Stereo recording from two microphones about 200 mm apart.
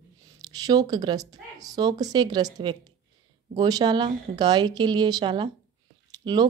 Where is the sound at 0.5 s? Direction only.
20° right (ahead or behind).